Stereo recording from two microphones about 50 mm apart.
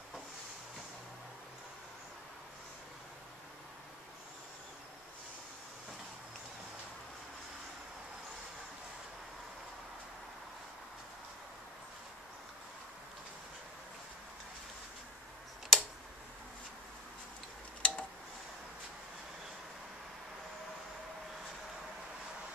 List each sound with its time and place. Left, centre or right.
15.7 s tick: centre
17.8 s tick-tock: left